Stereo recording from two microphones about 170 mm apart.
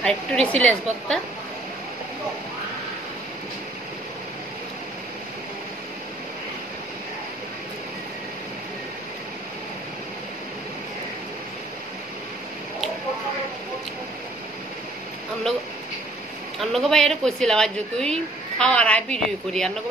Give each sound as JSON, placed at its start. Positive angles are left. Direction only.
{"t": 0.0, "sound": "a woman's voice", "side_deg": 5}
{"t": 16.5, "sound": "a woman's voice", "side_deg": 0}